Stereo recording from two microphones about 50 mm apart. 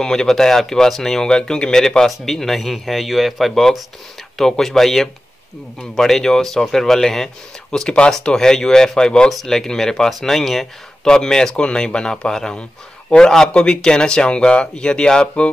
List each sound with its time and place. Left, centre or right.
0.0 s speech: centre